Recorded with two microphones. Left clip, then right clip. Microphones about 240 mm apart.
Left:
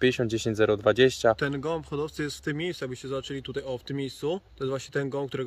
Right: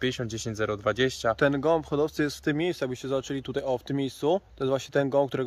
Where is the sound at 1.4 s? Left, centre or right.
Centre.